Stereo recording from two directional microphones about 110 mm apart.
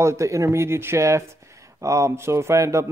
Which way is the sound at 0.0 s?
30° right (ahead or behind).